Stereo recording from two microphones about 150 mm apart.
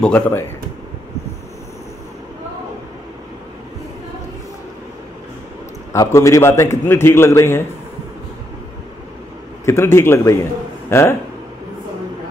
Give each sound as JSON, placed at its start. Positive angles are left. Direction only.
{"t": 0.0, "sound": "a man's voice", "side_deg": 10}
{"t": 5.9, "sound": "a man's voice", "side_deg": 20}
{"t": 9.7, "sound": "a man's voice", "side_deg": 15}